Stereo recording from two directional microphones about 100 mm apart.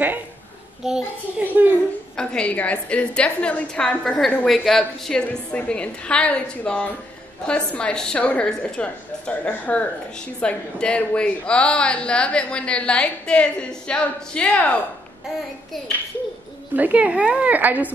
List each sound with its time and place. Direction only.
0.8 s a child's voice: 5° right (ahead or behind)
1.4 s speech: 15° right (ahead or behind)
2.1 s a woman's voice: 10° left (ahead or behind)
16.7 s speech: 15° right (ahead or behind)